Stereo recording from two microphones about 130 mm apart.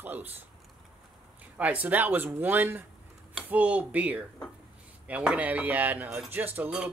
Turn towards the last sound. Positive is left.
turn(degrees=-10)  # may be behind; listen again after turning